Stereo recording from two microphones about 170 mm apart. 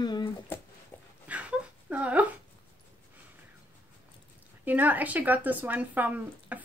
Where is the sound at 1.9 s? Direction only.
10° right (ahead or behind).